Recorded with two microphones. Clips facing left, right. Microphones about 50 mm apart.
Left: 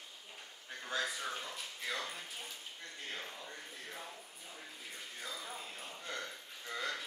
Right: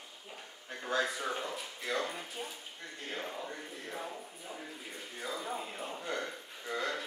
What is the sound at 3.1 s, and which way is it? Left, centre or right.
Music, right.